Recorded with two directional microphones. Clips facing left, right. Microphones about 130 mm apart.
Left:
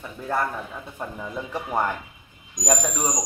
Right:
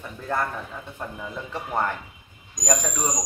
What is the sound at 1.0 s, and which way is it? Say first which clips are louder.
Speech: left 3 dB; 10° left (ahead or behind).